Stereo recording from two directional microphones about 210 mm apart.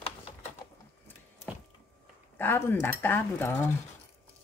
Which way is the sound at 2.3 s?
10° left (ahead or behind).